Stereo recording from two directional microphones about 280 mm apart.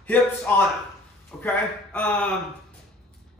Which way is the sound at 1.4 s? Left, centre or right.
Centre.